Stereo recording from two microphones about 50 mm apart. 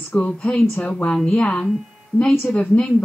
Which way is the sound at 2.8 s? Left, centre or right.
Left.